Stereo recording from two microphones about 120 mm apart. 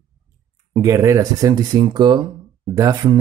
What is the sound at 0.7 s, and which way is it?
Speech, 25° right (ahead or behind).